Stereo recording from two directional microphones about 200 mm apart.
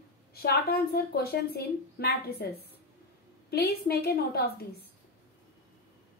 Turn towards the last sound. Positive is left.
turn(degrees=50)  # may be behind; listen again after turning